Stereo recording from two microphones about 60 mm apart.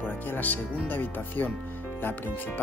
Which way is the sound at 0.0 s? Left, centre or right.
Left.